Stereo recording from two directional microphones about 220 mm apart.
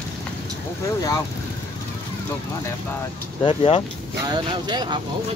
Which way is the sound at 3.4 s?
25° left (ahead or behind).